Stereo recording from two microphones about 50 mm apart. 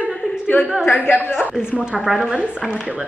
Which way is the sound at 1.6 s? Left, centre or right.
Centre.